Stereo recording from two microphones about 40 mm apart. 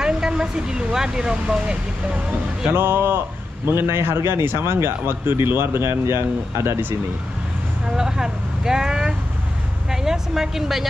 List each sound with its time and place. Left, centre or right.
0.0 s speech: centre
2.7 s a man's voice: right
7.9 s a woman's voice: centre